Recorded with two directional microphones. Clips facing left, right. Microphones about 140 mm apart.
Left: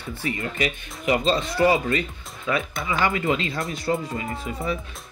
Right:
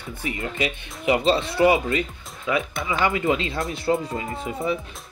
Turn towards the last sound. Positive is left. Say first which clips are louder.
# right 2 dB
turn(degrees=-20)  # may be behind; listen again after turning